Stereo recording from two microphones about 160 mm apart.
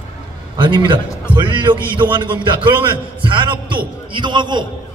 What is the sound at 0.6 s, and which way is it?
A man's voice, 30° right (ahead or behind).